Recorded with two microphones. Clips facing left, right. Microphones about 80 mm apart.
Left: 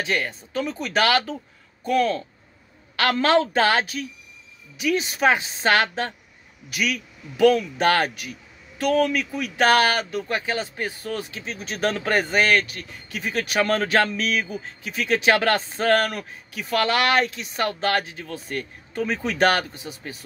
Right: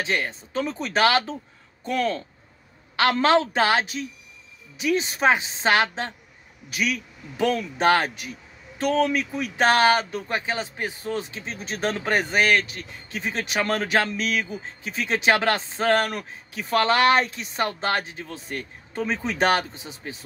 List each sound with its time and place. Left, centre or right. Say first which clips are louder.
0.0 s a man's voice: left 1 dB; right
4.7 s a man's voice: even; right
6.7 s a man's voice: even; right
14.6 s a man's voice: left 1 dB; right